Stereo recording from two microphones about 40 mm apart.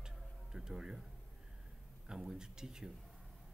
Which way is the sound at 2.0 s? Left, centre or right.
Centre.